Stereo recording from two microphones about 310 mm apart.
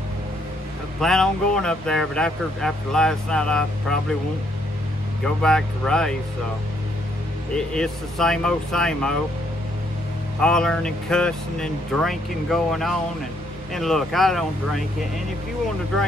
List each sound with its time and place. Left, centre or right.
1.0 s speech: centre
5.2 s speech: centre
7.5 s speech: centre
10.4 s speech: centre